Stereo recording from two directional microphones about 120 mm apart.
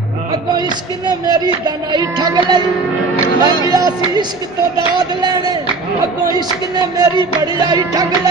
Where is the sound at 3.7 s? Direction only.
35° right (ahead or behind).